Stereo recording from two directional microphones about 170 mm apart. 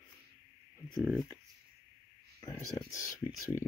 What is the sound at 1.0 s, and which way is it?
Speech, centre (ahead or behind).